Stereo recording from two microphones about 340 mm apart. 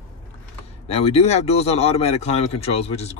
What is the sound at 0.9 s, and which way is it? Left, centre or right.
A man's voice, centre.